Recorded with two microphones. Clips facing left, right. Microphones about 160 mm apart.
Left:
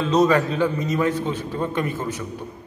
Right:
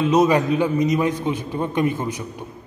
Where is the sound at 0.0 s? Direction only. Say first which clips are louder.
Right 1 dB; 15° right (ahead or behind).